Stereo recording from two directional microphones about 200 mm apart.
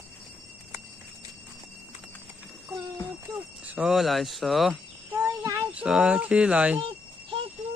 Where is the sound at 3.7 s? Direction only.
Centre (ahead or behind).